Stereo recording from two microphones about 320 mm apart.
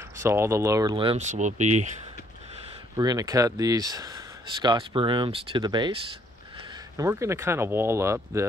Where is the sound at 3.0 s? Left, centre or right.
Centre.